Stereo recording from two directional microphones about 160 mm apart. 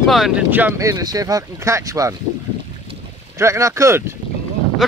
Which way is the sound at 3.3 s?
20° right (ahead or behind).